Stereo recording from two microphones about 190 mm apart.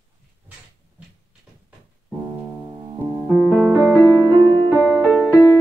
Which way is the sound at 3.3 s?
5° right (ahead or behind).